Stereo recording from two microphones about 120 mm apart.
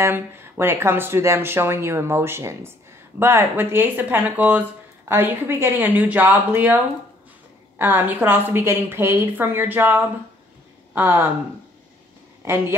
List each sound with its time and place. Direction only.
0.0 s speech: 20° right (ahead or behind)
7.8 s speech: 15° right (ahead or behind)